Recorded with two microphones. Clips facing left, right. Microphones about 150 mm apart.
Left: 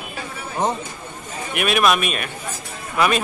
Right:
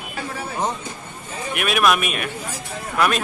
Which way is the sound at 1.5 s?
Centre (ahead or behind).